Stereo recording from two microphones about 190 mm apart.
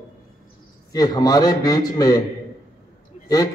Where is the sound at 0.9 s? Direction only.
20° left (ahead or behind).